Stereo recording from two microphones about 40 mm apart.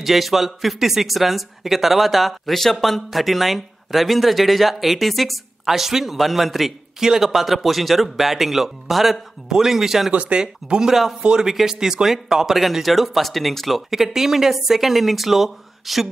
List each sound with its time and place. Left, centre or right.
0.0 s speech: centre
7.0 s speech: centre
10.1 s speech: right
10.4 s speech: centre